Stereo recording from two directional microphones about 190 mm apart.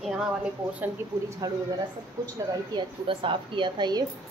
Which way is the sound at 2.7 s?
25° right (ahead or behind).